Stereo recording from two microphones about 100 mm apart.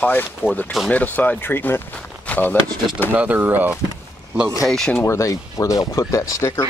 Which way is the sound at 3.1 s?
15° right (ahead or behind).